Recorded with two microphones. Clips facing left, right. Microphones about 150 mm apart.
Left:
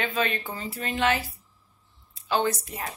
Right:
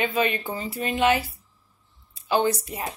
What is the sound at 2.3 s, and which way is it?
Speech, 15° right (ahead or behind).